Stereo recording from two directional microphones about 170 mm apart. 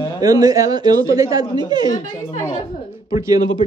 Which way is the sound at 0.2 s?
20° right (ahead or behind).